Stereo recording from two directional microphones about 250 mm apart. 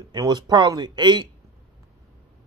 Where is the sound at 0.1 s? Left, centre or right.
Centre.